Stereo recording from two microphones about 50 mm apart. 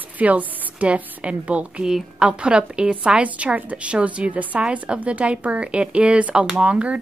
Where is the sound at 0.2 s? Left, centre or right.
Right.